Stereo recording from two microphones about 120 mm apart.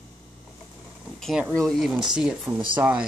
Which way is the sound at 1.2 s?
5° right (ahead or behind).